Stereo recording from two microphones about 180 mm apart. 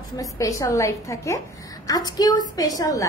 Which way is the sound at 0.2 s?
20° left (ahead or behind).